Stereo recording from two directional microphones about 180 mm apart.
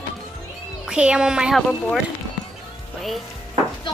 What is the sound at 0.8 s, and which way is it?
A woman's voice, 5° right (ahead or behind).